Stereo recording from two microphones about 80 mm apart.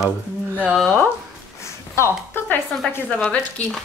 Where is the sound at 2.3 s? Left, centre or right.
Left.